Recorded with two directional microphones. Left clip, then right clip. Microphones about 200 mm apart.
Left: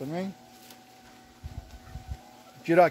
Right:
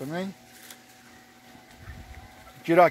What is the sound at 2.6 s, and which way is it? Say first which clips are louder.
Speech: right 2 dB; 25° right (ahead or behind).